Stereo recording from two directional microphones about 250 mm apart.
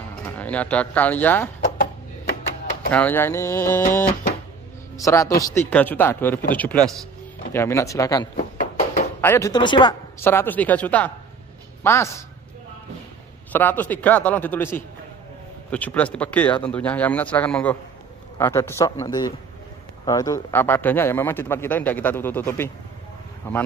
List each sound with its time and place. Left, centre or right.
0.4 s a man's voice: centre
2.9 s a man's voice: centre
4.9 s a man's voice: centre
8.4 s a sound: left
9.2 s a man's voice: centre
13.5 s a man's voice: centre